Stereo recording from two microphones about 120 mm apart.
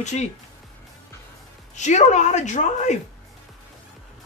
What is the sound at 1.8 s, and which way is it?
Speech, 75° left (ahead or behind).